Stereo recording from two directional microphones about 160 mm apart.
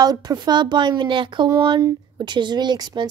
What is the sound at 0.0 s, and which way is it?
A child's voice, 25° right (ahead or behind).